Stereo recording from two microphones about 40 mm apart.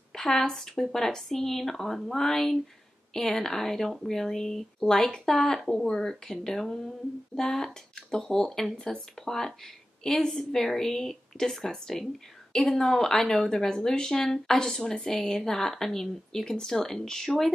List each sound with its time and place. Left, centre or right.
0.1 s a woman's voice: centre